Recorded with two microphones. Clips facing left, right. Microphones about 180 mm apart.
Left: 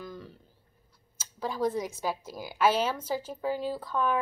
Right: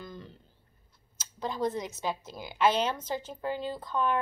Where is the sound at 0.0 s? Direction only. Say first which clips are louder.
Left 2 dB; 5° left (ahead or behind).